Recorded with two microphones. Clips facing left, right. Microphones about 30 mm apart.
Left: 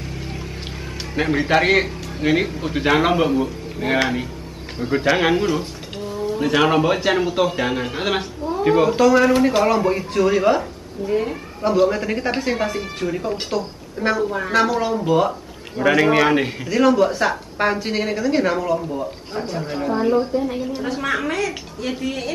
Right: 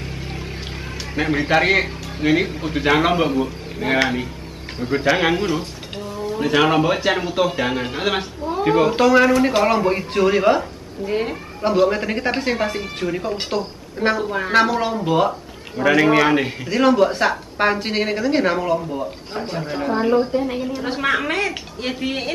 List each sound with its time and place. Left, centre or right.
1.1 s a man's voice: centre
8.9 s a woman's voice: centre
11.1 s a woman's voice: right; by 16.5 s centre
16.6 s a woman's voice: centre
19.8 s a woman's voice: right